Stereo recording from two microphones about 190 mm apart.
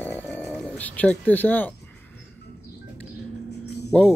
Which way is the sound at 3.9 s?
5° left (ahead or behind).